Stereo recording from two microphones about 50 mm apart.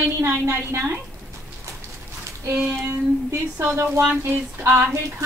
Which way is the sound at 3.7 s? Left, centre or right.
Right.